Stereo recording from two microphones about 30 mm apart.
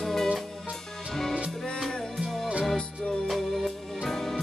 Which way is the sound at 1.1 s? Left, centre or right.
Centre.